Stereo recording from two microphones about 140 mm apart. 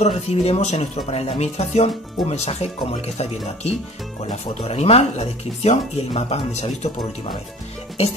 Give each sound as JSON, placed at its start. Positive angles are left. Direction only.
{"t": 0.0, "sound": "speech", "side_deg": 50}